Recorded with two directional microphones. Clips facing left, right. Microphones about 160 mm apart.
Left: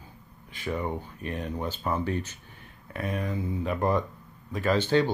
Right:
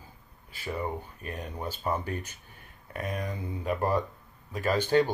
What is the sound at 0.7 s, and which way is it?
Speech, 10° right (ahead or behind).